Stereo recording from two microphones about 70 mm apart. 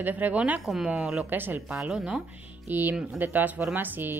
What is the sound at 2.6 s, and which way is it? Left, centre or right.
Speech, right.